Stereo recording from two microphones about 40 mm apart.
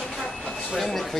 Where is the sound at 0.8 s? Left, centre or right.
Centre.